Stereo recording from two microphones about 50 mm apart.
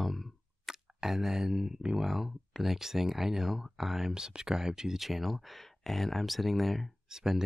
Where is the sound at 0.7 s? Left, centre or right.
Centre.